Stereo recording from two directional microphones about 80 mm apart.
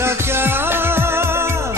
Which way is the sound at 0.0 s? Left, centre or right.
Right.